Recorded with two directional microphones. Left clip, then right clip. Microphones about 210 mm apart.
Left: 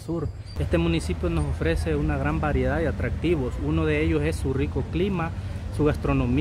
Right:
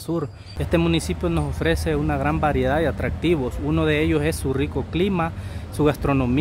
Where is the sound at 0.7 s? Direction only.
25° right (ahead or behind).